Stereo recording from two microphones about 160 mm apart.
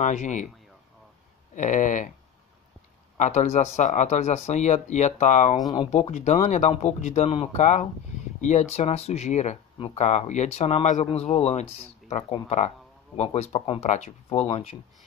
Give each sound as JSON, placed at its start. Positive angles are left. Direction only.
{"t": 0.0, "sound": "speech", "side_deg": 50}
{"t": 1.5, "sound": "speech", "side_deg": 50}
{"t": 3.2, "sound": "speech", "side_deg": 45}